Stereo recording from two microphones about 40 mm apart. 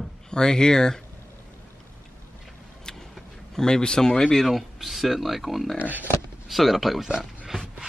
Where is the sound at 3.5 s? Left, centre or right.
Centre.